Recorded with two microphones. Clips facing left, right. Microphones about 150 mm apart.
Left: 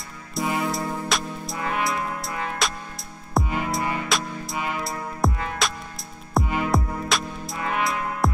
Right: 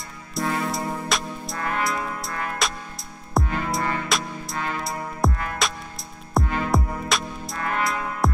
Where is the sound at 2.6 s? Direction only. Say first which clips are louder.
Even; centre (ahead or behind).